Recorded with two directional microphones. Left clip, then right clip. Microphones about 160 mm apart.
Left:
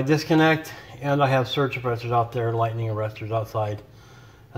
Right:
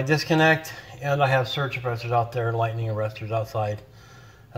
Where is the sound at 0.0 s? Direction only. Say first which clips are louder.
Left 1 dB; 10° left (ahead or behind).